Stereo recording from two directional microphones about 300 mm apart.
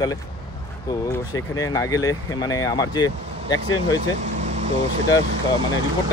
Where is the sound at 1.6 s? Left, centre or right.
Centre.